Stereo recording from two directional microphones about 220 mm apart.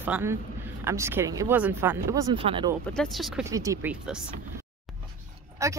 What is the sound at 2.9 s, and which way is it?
Speech, centre (ahead or behind).